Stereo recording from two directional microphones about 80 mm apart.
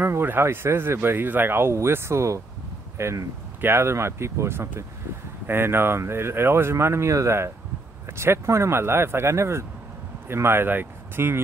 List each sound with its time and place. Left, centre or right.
0.0 s speech: right